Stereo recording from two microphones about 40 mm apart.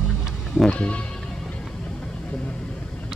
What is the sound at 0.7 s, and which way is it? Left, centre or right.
Music, left.